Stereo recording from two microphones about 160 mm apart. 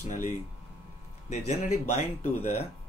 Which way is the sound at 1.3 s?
45° left (ahead or behind).